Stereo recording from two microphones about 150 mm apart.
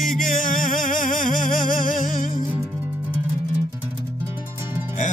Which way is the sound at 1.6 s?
65° left (ahead or behind).